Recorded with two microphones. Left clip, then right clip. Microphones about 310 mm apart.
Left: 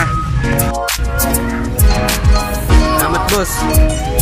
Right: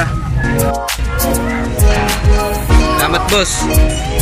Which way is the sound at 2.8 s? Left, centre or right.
Centre.